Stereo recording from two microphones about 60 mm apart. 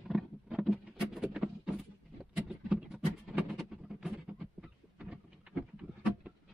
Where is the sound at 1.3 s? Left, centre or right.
Centre.